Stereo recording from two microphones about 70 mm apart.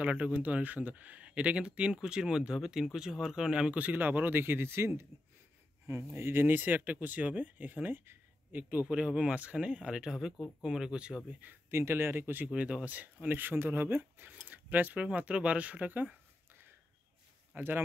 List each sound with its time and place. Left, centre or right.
0.0 s speech: centre
11.7 s speech: right
12.5 s speech: centre
17.6 s speech: right